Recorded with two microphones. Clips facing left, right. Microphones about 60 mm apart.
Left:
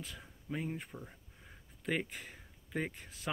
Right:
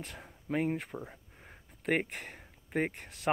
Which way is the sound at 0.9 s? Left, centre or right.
Right.